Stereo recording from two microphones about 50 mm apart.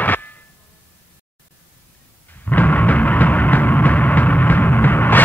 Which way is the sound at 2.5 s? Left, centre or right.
Left.